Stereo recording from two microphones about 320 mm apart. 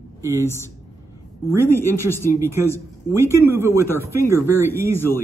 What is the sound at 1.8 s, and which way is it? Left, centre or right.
Speech, centre.